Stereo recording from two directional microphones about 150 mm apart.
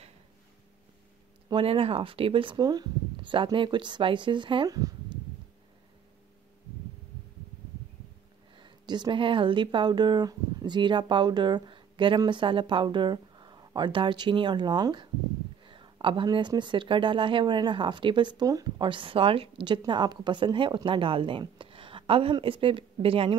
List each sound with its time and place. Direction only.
1.5 s speech: 40° right (ahead or behind)
8.5 s speech: 30° right (ahead or behind)